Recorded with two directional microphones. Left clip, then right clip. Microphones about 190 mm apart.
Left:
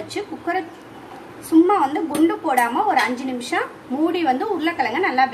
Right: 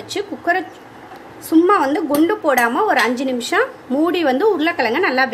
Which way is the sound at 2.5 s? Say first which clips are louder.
Right 3 dB; 50° right (ahead or behind).